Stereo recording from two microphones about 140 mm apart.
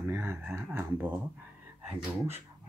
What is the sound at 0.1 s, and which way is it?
Speech, 15° right (ahead or behind).